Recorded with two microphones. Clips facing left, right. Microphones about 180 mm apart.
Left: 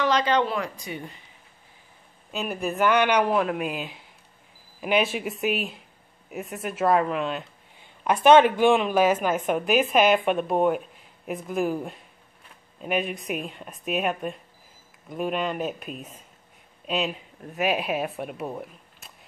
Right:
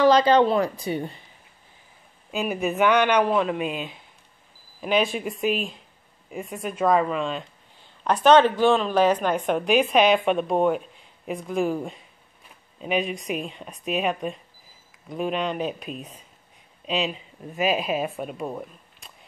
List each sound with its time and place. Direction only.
0.0 s speech: 35° right (ahead or behind)
2.3 s speech: 5° right (ahead or behind)